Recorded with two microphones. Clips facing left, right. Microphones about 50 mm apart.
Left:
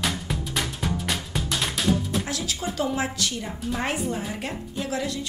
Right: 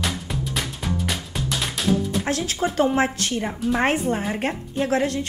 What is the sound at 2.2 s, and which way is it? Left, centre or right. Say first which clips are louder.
A woman's voice: right 6 dB; right.